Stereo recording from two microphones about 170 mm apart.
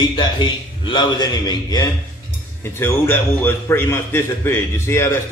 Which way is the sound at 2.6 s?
15° left (ahead or behind).